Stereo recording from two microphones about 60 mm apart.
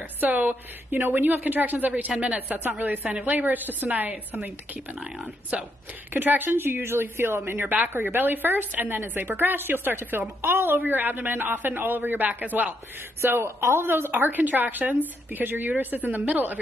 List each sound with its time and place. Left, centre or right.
0.2 s speech: right
5.5 s speech: right
6.1 s a woman's voice: right
13.2 s speech: right
13.8 s a woman's voice: right